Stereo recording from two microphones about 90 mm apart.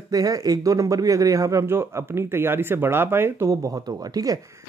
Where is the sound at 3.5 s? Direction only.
40° right (ahead or behind).